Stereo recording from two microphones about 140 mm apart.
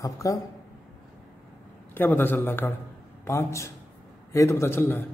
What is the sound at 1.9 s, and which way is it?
A man's voice, 15° left (ahead or behind).